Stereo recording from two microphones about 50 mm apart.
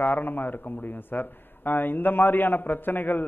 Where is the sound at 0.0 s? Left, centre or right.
Left.